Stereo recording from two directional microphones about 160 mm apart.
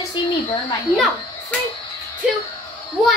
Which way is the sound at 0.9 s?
Centre (ahead or behind).